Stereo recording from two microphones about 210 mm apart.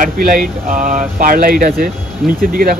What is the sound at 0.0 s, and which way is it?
Speech, 40° right (ahead or behind).